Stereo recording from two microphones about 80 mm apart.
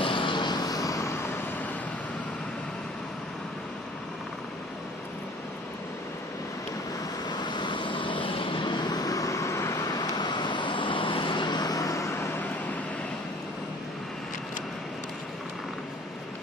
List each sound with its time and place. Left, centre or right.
0.0 s vehicle: left
0.6 s vehicle: left
7.2 s vehicle: left
9.8 s vehicle: left
11.7 s vehicle: left